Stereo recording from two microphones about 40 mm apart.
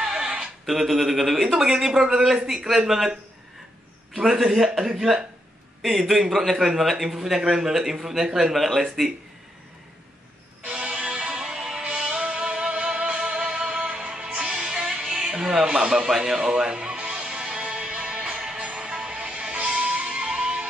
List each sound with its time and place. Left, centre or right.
0.0 s a sound: centre
0.7 s speech: centre
1.5 s speech: centre
4.1 s a man's voice: centre
7.1 s speech: centre
8.5 s a man's voice: centre
10.6 s music: right
15.8 s speech: right
16.1 s speech: centre
17.0 s music: right
18.6 s music: right